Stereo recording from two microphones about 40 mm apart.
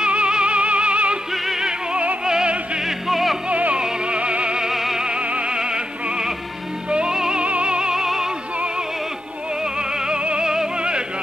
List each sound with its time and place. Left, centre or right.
0.0 s music: right
1.3 s music: centre
1.6 s music: centre
2.8 s music: centre
3.4 s music: right
3.7 s music: right
4.6 s opera: centre
5.0 s music: right
7.4 s music: right
7.9 s music: centre
9.6 s music: centre